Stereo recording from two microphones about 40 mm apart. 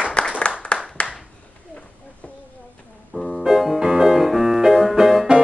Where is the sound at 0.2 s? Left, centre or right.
Left.